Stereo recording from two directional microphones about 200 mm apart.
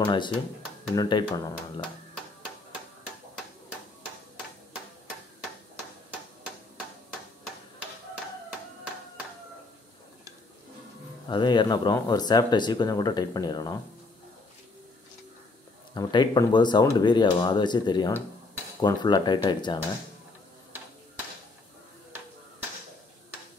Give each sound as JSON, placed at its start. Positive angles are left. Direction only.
{"t": 0.0, "sound": "speech", "side_deg": 25}
{"t": 11.2, "sound": "speech", "side_deg": 20}
{"t": 15.9, "sound": "speech", "side_deg": 20}